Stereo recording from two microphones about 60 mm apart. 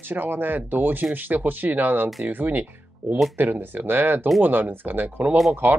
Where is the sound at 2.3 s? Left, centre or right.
Right.